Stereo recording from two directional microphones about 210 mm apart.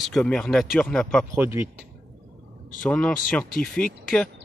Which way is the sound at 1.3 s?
10° right (ahead or behind).